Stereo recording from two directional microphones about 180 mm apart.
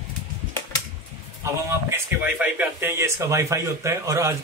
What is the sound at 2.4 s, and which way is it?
A man's voice, 10° right (ahead or behind).